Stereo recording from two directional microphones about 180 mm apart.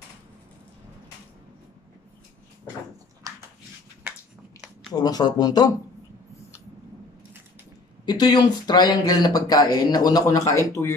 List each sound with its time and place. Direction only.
3.3 s a sound: 20° right (ahead or behind)
4.9 s speech: 20° left (ahead or behind)
8.0 s speech: 25° left (ahead or behind)